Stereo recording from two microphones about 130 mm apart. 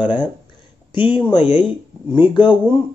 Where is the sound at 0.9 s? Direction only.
40° left (ahead or behind).